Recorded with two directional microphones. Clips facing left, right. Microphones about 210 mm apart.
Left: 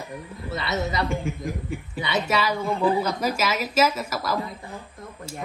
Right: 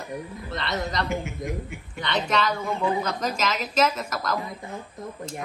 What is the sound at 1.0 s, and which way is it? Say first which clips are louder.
Speech: left 2 dB; 30° left (ahead or behind).